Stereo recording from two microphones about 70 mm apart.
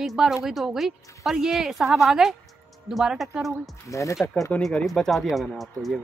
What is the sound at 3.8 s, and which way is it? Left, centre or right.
Speech, left.